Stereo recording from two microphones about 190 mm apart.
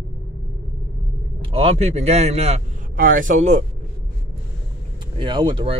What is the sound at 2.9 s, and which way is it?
Speech, 45° right (ahead or behind).